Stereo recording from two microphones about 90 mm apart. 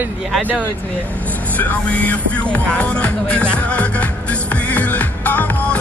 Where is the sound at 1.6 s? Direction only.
15° left (ahead or behind).